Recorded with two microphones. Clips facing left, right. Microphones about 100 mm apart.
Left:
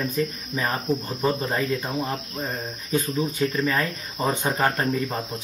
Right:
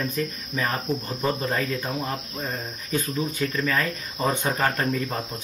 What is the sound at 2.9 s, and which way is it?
Speech, 30° left (ahead or behind).